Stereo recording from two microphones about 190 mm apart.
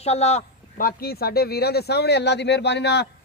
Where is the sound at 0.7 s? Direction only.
50° left (ahead or behind).